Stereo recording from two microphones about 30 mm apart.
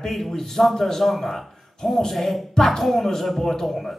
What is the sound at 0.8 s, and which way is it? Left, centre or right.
A man's voice, centre.